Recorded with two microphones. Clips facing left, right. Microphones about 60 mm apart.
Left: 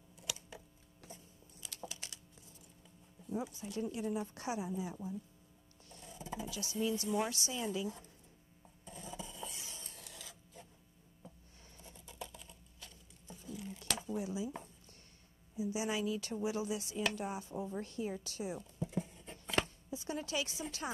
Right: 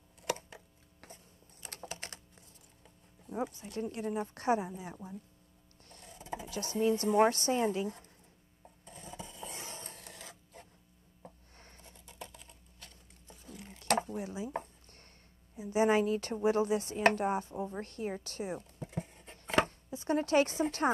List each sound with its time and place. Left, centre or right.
0.2 s a sound: right
1.0 s typing: right
2.8 s speech: right
8.8 s filing: right
9.5 s a sound: right
15.5 s speech: right
19.5 s chopping: right